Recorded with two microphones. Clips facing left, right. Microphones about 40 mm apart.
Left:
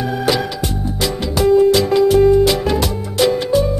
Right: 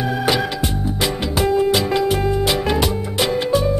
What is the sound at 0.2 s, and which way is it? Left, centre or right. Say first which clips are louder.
Music: left 2 dB; centre.